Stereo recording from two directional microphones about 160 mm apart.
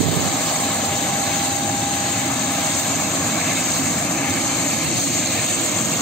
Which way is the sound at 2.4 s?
5° left (ahead or behind).